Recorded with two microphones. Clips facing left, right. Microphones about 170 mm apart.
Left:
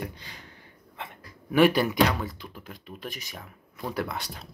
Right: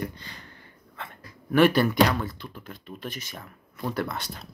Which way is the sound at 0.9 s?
15° left (ahead or behind).